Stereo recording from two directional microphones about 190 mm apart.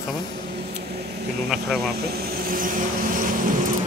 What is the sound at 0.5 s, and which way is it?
Vehicle, 60° right (ahead or behind).